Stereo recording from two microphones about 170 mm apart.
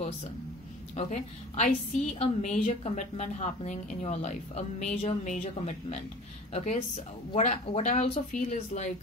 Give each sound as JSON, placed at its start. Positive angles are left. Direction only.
{"t": 0.9, "sound": "a woman's voice", "side_deg": 45}